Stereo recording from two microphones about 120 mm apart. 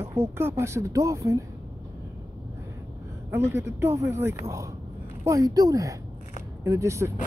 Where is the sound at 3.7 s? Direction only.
20° right (ahead or behind).